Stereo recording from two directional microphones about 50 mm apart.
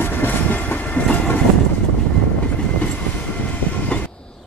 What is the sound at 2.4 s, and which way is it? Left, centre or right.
Train, left.